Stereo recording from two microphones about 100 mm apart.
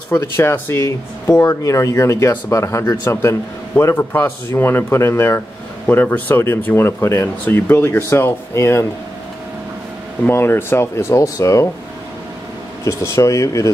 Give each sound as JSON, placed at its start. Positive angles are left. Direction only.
{"t": 0.1, "sound": "speech", "side_deg": 25}
{"t": 10.2, "sound": "speech", "side_deg": 25}
{"t": 12.8, "sound": "speech", "side_deg": 30}